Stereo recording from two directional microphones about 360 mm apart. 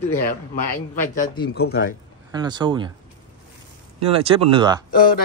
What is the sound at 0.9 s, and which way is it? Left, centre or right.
Speech, centre.